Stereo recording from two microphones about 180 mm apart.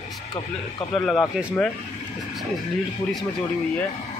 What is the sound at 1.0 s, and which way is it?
Speech, centre (ahead or behind).